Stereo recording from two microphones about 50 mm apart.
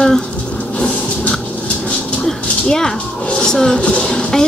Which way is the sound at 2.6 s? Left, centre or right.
Centre.